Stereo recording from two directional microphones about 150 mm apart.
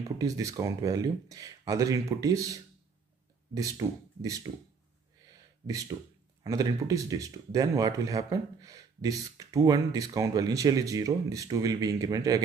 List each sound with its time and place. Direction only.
0.2 s speech: 20° right (ahead or behind)
5.2 s a sound: 25° right (ahead or behind)
6.4 s speech: 25° right (ahead or behind)